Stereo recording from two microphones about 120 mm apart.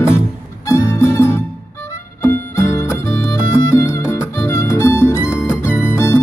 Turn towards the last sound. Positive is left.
turn(degrees=20)  # may be behind; listen again after turning